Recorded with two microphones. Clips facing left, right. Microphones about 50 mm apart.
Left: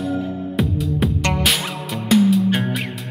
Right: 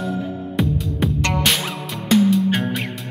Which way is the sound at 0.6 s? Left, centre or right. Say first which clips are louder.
Even; centre.